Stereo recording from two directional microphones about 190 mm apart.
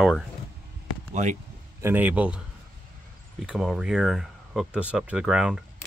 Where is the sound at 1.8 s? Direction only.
10° right (ahead or behind).